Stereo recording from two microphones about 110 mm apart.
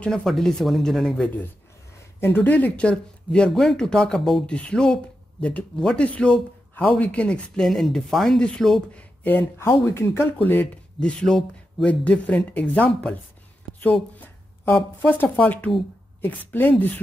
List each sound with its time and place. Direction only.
0.0 s speech: 5° left (ahead or behind)
2.1 s speech: 20° left (ahead or behind); by 9.0 s 5° left (ahead or behind)
9.9 s speech: 25° left (ahead or behind)
14.1 s speech: 15° left (ahead or behind)